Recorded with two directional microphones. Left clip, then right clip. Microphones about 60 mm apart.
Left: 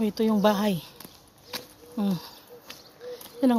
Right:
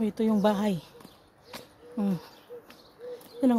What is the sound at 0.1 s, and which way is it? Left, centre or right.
Speech, centre.